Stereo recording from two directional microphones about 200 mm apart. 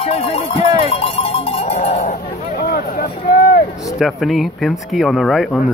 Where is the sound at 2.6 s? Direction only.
50° left (ahead or behind).